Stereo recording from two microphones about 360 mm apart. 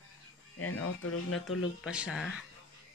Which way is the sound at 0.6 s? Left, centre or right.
Left.